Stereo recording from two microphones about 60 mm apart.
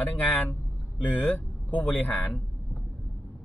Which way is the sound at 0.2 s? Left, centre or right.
Left.